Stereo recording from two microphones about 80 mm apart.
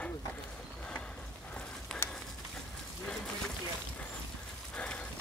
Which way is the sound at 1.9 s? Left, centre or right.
Centre.